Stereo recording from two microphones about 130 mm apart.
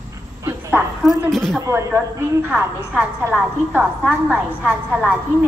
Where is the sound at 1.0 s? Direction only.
5° left (ahead or behind).